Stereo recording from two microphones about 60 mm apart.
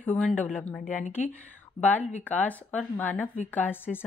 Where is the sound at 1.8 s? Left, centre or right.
Left.